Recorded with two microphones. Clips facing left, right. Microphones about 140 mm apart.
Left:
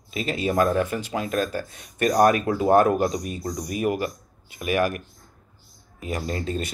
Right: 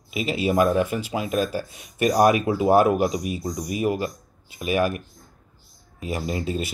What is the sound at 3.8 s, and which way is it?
Speech, 25° right (ahead or behind).